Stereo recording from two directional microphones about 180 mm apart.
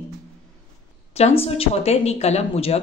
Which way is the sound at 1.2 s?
35° left (ahead or behind).